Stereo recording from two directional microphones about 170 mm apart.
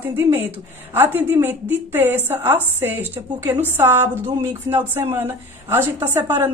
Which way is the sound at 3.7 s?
15° right (ahead or behind).